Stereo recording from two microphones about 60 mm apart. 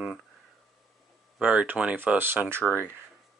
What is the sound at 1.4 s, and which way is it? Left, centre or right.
Speech, right.